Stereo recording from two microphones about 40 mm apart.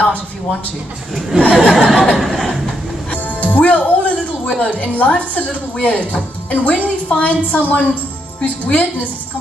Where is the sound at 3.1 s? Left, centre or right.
Left.